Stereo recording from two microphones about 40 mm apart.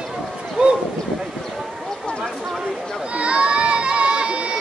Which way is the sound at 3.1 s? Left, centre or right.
Right.